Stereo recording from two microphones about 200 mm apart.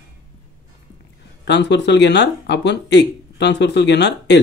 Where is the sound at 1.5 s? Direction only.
60° left (ahead or behind).